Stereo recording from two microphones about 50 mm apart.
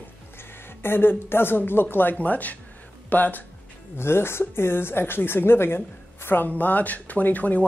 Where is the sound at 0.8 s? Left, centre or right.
Left.